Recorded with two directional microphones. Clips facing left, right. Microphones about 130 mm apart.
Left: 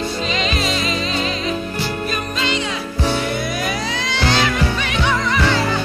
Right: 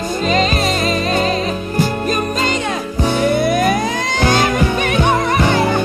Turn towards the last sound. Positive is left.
turn(degrees=-50)  # may be behind; listen again after turning